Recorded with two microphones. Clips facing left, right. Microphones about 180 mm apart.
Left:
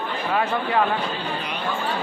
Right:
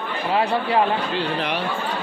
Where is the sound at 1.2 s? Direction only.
70° right (ahead or behind).